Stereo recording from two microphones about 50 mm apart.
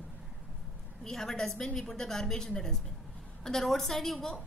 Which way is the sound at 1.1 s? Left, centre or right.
Centre.